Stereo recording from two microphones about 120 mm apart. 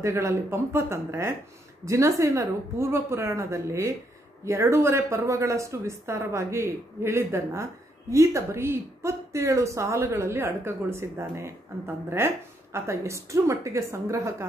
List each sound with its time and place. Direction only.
0.0 s speech: 25° right (ahead or behind)